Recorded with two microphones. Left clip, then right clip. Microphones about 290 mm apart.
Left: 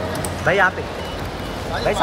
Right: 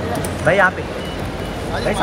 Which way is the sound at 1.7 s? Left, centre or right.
Centre.